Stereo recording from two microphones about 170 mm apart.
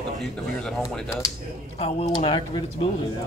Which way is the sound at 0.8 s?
20° left (ahead or behind).